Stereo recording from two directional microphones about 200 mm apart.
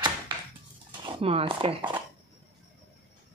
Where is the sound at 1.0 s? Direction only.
30° right (ahead or behind).